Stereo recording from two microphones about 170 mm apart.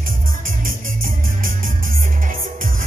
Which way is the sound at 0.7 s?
55° right (ahead or behind).